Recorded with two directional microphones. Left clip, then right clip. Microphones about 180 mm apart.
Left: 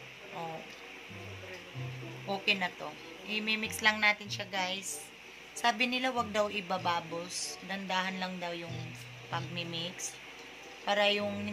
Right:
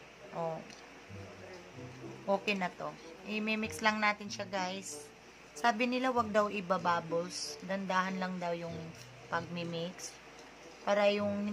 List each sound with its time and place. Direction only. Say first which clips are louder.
2.2 s speech: left 1 dB; 60° right (ahead or behind)